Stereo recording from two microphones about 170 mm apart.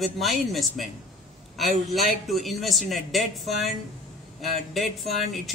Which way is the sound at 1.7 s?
50° right (ahead or behind).